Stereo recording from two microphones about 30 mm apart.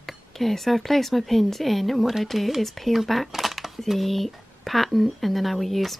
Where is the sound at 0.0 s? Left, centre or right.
Centre.